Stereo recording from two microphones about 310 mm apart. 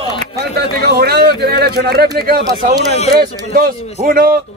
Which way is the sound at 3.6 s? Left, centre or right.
Right.